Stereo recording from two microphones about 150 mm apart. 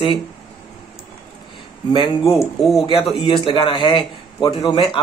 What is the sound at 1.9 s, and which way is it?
A man's voice, 35° left (ahead or behind).